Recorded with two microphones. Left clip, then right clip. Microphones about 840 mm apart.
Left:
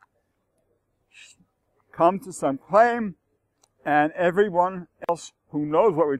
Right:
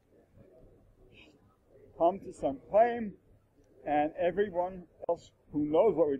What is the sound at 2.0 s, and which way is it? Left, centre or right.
A man's voice, left.